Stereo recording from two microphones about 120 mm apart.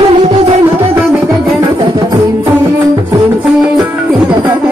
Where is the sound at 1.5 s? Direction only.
35° right (ahead or behind).